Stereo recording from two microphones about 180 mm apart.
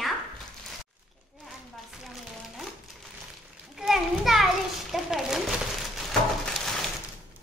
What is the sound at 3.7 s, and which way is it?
Children playing, centre (ahead or behind).